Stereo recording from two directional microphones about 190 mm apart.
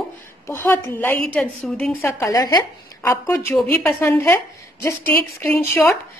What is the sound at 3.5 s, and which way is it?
A woman's voice, 5° left (ahead or behind).